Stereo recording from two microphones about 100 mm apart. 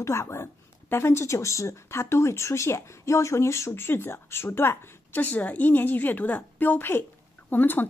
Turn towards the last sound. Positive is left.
turn(degrees=20)  # may be behind; listen again after turning